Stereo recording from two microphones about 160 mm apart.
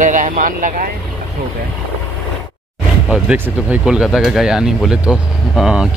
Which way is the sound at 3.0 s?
5° right (ahead or behind).